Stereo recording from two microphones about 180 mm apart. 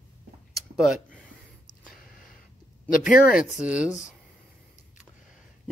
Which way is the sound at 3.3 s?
5° right (ahead or behind).